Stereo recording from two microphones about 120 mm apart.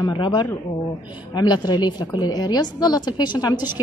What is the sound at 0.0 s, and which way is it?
A woman's voice, 40° left (ahead or behind).